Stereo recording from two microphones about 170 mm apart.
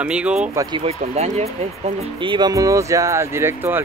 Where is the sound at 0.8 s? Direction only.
40° right (ahead or behind).